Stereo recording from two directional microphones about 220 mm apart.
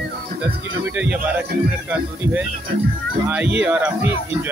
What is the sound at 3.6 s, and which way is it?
Speech, 5° right (ahead or behind).